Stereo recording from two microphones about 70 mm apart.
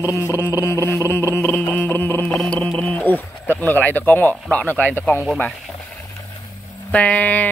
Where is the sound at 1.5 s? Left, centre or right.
Left.